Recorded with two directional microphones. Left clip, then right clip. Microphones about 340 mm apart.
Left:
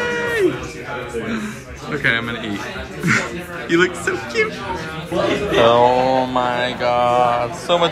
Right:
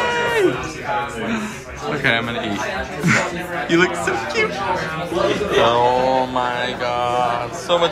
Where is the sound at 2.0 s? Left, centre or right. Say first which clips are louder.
Even; centre.